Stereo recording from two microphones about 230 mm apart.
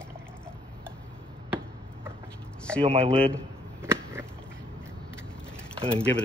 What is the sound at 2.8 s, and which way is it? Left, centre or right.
Speech, right.